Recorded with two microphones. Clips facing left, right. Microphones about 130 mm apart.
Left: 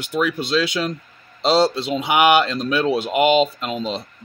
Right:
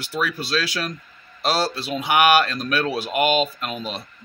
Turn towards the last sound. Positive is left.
turn(degrees=20)  # may be behind; listen again after turning